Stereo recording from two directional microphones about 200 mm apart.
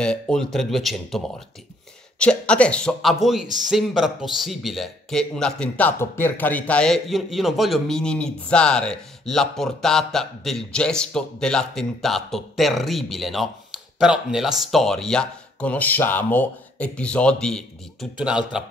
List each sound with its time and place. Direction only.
0.0 s a man's voice: 5° left (ahead or behind)